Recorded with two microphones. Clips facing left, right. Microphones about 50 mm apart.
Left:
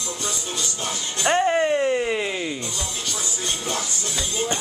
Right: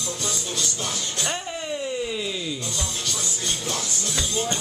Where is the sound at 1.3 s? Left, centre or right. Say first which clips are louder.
Left 11 dB; left.